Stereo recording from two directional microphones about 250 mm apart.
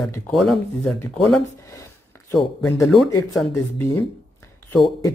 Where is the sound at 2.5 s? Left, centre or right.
Centre.